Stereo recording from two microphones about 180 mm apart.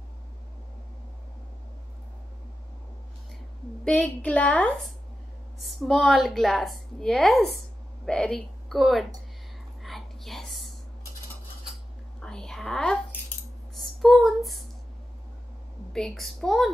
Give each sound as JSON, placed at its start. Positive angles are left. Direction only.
{"t": 3.8, "sound": "a woman's voice", "side_deg": 5}
{"t": 9.8, "sound": "whispering", "side_deg": 0}
{"t": 12.2, "sound": "whispering", "side_deg": 5}
{"t": 13.7, "sound": "a sound", "side_deg": 0}
{"t": 15.9, "sound": "a woman's voice", "side_deg": 0}